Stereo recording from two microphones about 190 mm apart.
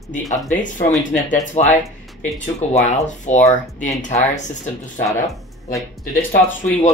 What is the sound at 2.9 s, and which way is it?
Speech, 40° left (ahead or behind).